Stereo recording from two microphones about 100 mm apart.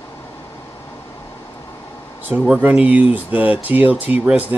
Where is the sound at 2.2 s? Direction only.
10° right (ahead or behind).